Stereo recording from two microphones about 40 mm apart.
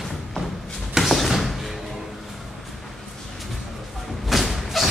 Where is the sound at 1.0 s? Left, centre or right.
Centre.